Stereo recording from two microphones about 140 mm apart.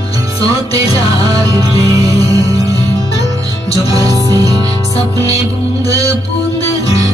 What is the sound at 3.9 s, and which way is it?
Music, 25° right (ahead or behind).